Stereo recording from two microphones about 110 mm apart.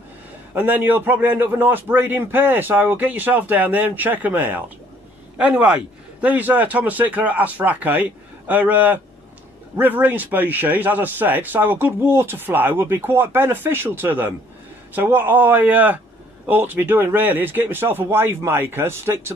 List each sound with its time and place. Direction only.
0.6 s speech: 15° right (ahead or behind)